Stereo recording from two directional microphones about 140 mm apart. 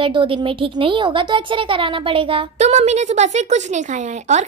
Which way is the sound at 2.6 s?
55° right (ahead or behind).